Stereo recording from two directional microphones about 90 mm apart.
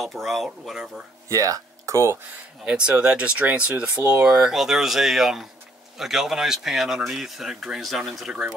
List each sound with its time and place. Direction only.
0.0 s speech: centre (ahead or behind)
1.3 s speech: 40° right (ahead or behind)
2.6 s speech: 10° right (ahead or behind)